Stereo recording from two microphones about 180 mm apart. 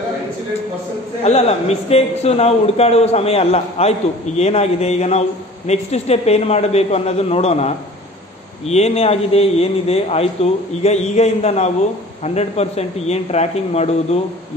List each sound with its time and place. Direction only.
1.2 s a man's voice: 35° left (ahead or behind)